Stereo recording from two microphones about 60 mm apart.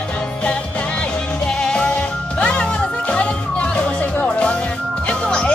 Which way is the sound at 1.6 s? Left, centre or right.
Centre.